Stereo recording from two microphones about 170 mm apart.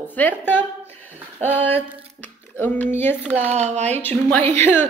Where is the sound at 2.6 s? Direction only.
10° left (ahead or behind).